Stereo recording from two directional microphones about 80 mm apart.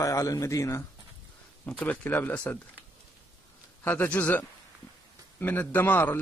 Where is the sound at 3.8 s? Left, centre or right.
Left.